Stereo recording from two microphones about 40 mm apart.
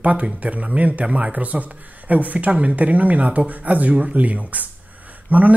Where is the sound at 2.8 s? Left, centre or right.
Right.